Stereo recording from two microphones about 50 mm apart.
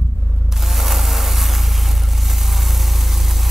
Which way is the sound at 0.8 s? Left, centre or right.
Centre.